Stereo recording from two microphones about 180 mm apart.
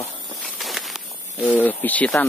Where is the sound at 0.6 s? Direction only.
Centre (ahead or behind).